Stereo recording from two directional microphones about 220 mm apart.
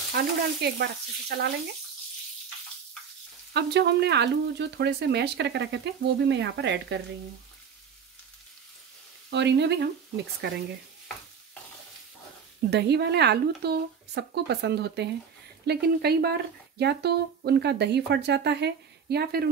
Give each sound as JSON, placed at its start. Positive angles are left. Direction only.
{"t": 0.1, "sound": "speech", "side_deg": -45}
{"t": 3.5, "sound": "speech", "side_deg": -50}
{"t": 9.3, "sound": "speech", "side_deg": -50}
{"t": 12.6, "sound": "speech", "side_deg": -50}